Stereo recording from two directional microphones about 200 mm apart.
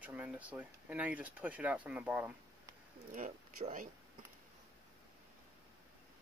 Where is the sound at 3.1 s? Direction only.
40° right (ahead or behind).